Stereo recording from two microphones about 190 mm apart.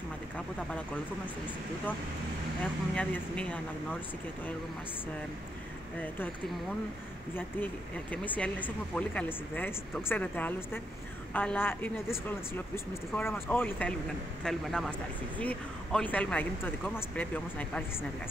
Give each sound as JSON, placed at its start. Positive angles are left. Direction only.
{"t": 2.6, "sound": "speech", "side_deg": 5}
{"t": 5.9, "sound": "speech", "side_deg": 10}